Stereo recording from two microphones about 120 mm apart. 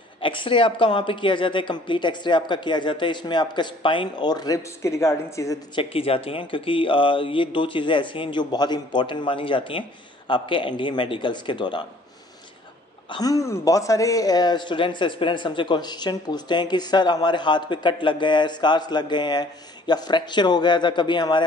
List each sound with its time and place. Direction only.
0.2 s speech: 45° left (ahead or behind); by 5.6 s 25° left (ahead or behind)
5.8 s speech: 50° left (ahead or behind)
13.1 s speech: 30° left (ahead or behind)